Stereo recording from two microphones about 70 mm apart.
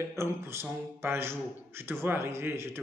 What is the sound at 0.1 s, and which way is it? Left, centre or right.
Speech, right.